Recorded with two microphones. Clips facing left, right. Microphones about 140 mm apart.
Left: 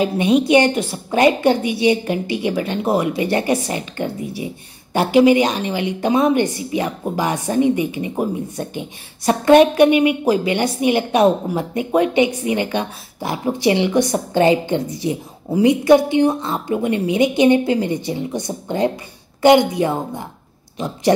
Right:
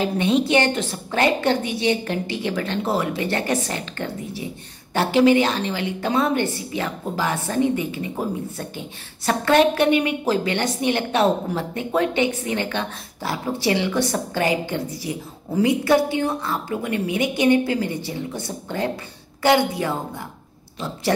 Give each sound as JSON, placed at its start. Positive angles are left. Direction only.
{"t": 0.0, "sound": "a woman's voice", "side_deg": 15}